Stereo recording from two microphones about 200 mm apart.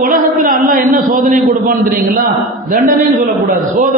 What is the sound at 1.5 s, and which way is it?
Speech, 45° right (ahead or behind).